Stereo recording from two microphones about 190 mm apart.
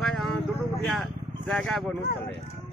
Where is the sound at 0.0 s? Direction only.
5° left (ahead or behind).